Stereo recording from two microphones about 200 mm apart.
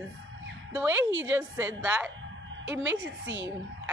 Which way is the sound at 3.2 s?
65° right (ahead or behind).